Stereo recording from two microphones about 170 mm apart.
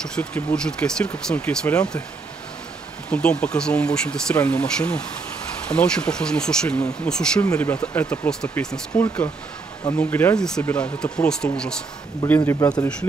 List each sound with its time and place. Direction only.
0.0 s speech: 5° left (ahead or behind)
3.1 s speech: 5° left (ahead or behind)
12.4 s speech: 20° left (ahead or behind)